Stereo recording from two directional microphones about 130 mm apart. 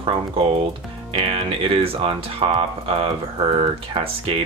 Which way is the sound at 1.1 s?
50° right (ahead or behind).